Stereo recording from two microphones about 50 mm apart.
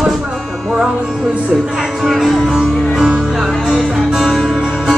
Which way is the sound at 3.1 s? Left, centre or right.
Centre.